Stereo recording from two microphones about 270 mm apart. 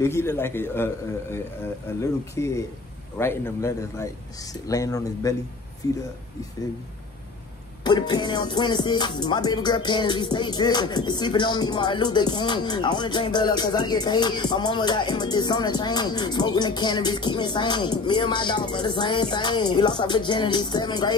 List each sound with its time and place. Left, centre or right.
0.0 s music: centre
2.0 s music: centre
7.8 s music: centre